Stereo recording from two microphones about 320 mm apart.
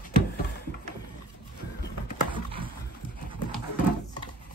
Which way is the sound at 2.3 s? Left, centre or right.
Centre.